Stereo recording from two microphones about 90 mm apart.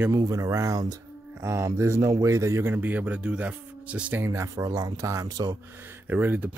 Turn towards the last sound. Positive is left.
turn(degrees=-20)  # may be behind; listen again after turning